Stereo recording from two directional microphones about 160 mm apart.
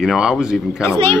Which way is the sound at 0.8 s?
15° left (ahead or behind).